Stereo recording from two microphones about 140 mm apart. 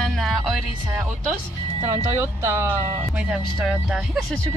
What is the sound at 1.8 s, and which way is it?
Speech, 20° right (ahead or behind).